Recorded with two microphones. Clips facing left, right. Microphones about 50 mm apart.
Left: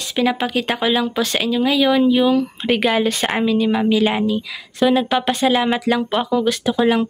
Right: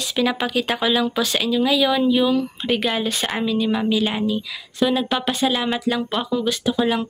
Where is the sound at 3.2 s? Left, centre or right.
Left.